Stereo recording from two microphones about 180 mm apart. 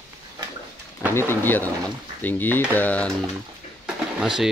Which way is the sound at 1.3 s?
10° left (ahead or behind).